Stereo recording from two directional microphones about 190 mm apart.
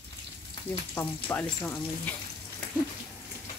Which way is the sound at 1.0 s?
10° left (ahead or behind).